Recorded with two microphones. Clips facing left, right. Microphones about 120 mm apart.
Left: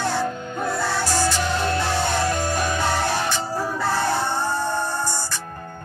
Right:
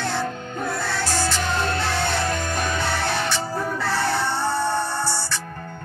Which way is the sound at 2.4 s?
50° right (ahead or behind).